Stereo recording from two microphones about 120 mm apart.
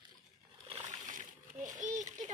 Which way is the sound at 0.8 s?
90° right.